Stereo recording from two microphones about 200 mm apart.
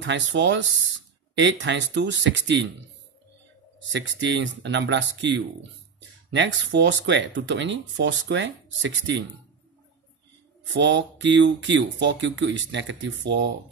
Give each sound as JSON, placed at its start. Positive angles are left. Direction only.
{"t": 0.0, "sound": "speech", "side_deg": -65}
{"t": 3.9, "sound": "speech", "side_deg": -65}
{"t": 10.6, "sound": "speech", "side_deg": -65}